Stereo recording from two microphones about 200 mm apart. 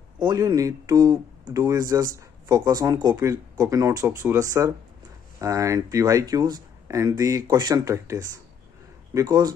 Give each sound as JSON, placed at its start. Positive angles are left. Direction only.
{"t": 0.2, "sound": "speech", "side_deg": -20}